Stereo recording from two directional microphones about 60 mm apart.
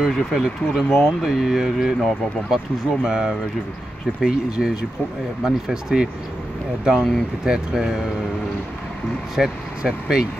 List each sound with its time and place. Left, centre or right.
0.0 s speech: centre
9.3 s speech: centre